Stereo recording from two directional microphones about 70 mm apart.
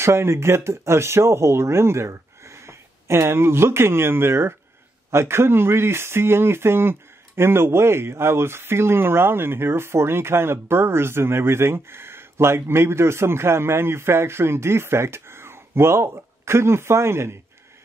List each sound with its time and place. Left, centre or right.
0.0 s speech: right